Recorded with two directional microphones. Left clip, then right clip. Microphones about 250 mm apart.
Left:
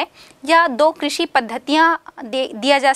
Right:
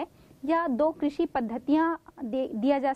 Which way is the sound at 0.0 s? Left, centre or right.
Centre.